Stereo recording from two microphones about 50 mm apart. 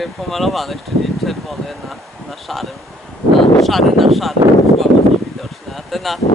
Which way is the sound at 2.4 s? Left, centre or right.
Centre.